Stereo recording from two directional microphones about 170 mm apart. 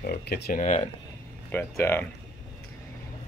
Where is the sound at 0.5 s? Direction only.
45° left (ahead or behind).